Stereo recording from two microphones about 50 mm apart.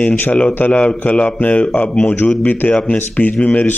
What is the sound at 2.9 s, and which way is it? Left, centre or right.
Speech, left.